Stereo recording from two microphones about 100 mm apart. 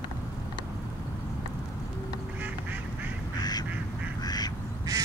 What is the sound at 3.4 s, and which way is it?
Duck, 40° left (ahead or behind).